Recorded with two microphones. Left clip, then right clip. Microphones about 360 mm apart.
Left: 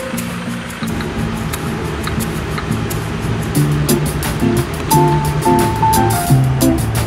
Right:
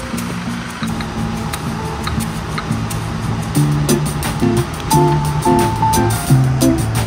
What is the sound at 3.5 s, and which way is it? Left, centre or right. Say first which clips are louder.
Music: even; centre.